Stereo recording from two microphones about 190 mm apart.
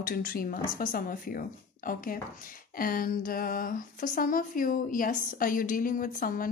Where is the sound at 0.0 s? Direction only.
50° left (ahead or behind).